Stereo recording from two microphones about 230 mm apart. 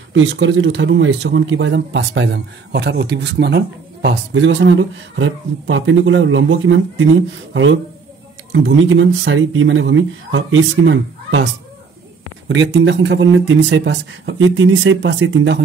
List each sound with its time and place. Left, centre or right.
0.1 s speech: right
8.5 s speech: right
12.4 s speech: right